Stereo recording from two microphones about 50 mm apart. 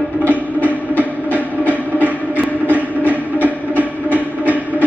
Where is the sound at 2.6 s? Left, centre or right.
Left.